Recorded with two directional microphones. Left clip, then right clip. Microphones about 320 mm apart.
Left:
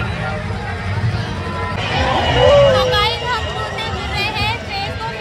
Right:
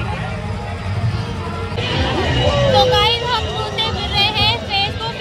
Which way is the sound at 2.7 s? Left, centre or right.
Centre.